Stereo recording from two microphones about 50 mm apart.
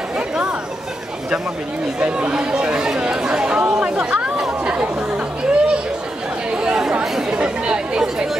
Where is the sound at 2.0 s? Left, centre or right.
Centre.